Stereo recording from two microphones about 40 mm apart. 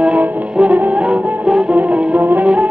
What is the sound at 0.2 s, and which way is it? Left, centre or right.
Music, right.